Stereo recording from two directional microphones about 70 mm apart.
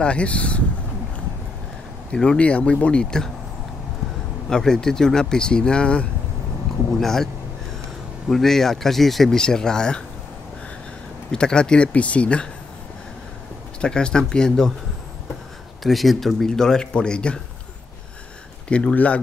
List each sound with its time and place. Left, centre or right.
0.0 s speech: centre
2.1 s speech: centre
4.5 s speech: centre
8.3 s speech: centre
11.3 s speech: centre
13.7 s speech: centre
15.8 s speech: centre
18.7 s speech: centre